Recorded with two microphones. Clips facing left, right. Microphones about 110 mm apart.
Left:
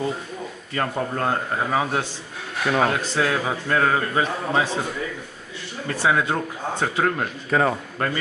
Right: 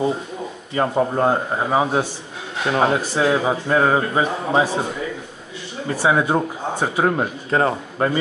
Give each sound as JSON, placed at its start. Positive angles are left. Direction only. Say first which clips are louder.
{"t": 0.7, "sound": "a man's voice", "louder": "right 6 dB", "side_deg": -20}
{"t": 5.9, "sound": "a man's voice", "louder": "right 3 dB", "side_deg": -20}